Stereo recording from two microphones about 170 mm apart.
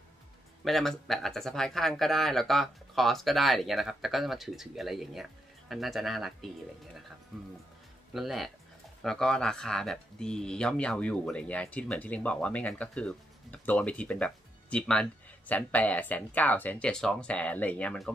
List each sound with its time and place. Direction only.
0.7 s speech: centre (ahead or behind)
8.1 s speech: centre (ahead or behind)